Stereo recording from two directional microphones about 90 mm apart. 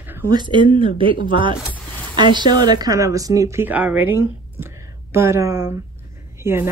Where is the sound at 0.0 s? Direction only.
25° right (ahead or behind).